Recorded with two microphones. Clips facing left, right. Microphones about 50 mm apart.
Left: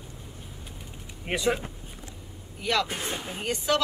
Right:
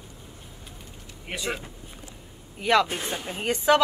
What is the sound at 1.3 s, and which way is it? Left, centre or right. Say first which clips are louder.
Speech: left 5 dB; left.